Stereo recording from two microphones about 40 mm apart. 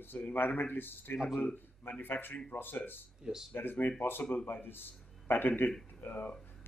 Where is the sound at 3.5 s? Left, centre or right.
Left.